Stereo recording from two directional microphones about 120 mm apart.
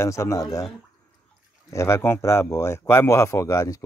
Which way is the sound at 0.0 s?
25° left (ahead or behind).